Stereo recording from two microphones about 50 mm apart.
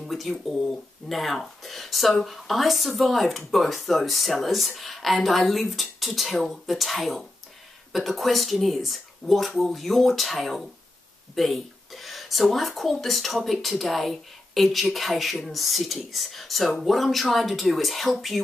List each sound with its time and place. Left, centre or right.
0.0 s speech: centre